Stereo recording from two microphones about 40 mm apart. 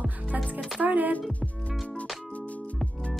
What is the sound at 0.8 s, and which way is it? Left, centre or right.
Speech, right.